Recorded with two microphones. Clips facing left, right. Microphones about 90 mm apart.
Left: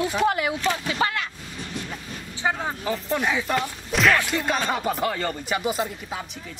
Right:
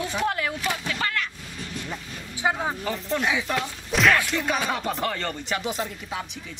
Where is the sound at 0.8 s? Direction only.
20° left (ahead or behind).